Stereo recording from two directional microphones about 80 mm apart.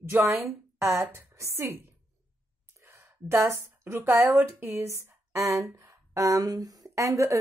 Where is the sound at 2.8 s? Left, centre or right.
Right.